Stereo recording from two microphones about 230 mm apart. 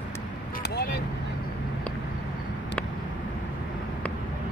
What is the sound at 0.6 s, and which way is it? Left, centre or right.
Vehicle, left.